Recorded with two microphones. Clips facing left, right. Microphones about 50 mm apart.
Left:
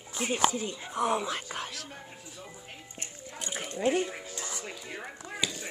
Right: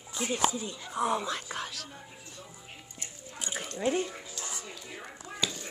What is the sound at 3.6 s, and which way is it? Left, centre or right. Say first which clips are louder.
Speech: left 2 dB; left.